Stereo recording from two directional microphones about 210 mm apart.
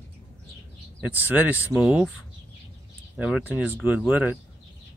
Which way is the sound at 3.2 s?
5° right (ahead or behind).